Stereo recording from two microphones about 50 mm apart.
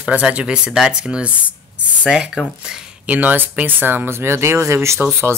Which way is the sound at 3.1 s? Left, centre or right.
Right.